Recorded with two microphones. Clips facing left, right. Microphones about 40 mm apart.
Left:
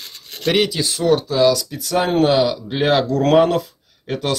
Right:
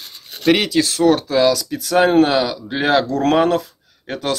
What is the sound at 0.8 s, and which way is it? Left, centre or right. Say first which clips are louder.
Speech: right 3 dB; right.